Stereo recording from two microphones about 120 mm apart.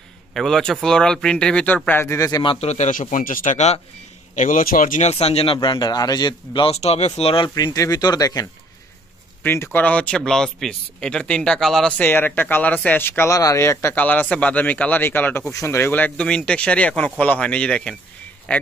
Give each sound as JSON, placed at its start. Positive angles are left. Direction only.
{"t": 0.3, "sound": "speech", "side_deg": 5}
{"t": 1.9, "sound": "speech", "side_deg": 20}
{"t": 2.4, "sound": "speech", "side_deg": 50}
{"t": 2.7, "sound": "speech", "side_deg": 80}
{"t": 4.4, "sound": "speech", "side_deg": 90}
{"t": 5.1, "sound": "speech", "side_deg": 55}
{"t": 6.7, "sound": "speech", "side_deg": 65}
{"t": 7.5, "sound": "speech", "side_deg": 30}
{"t": 9.4, "sound": "speech", "side_deg": 15}
{"t": 12.0, "sound": "speech", "side_deg": 15}